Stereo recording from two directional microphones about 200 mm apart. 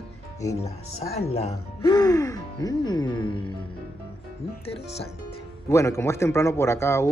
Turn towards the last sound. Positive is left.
turn(degrees=15)  # may be behind; listen again after turning